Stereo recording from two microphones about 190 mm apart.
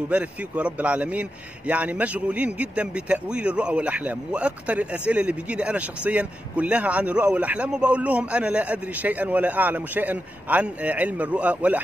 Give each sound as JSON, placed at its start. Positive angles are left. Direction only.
{"t": 0.1, "sound": "a man's voice", "side_deg": -5}